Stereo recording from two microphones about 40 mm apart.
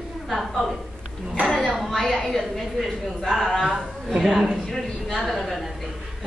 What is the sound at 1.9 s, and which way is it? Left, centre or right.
A woman's voice, centre.